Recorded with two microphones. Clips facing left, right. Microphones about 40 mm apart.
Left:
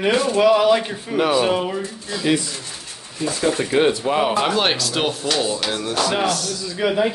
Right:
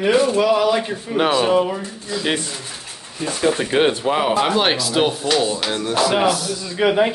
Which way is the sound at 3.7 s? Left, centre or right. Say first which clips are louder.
Left 1 dB; right.